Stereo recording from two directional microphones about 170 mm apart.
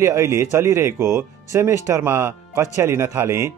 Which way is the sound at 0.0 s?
15° right (ahead or behind).